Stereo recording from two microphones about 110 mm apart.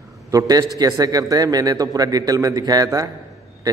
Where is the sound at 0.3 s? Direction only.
35° right (ahead or behind).